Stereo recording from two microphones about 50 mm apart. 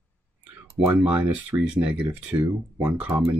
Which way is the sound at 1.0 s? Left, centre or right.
Right.